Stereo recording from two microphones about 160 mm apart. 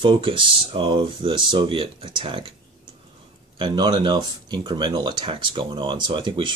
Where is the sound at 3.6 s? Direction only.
30° right (ahead or behind).